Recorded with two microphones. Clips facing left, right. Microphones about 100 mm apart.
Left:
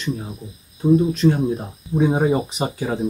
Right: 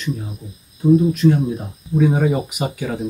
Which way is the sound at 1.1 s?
30° left (ahead or behind).